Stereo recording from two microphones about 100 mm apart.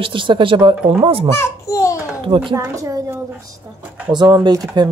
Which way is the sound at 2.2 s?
55° right (ahead or behind).